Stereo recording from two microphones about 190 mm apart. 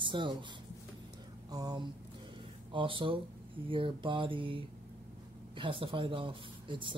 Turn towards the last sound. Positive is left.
turn(degrees=-25)  # may be behind; listen again after turning